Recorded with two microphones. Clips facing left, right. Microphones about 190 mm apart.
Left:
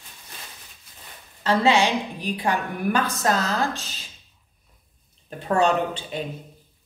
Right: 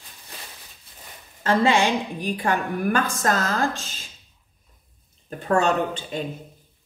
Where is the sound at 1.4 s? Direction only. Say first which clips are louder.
Even; 50° right (ahead or behind).